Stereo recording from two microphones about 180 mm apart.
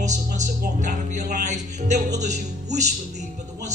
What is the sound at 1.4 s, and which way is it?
Speech, 40° right (ahead or behind).